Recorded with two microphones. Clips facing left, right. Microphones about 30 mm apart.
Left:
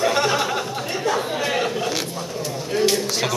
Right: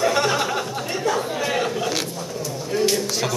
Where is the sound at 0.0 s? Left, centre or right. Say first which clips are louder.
Even; centre.